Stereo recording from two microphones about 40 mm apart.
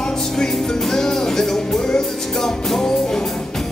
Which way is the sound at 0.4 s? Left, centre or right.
Centre.